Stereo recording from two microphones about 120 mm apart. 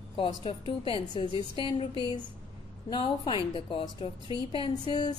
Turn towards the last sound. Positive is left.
turn(degrees=40)  # may be behind; listen again after turning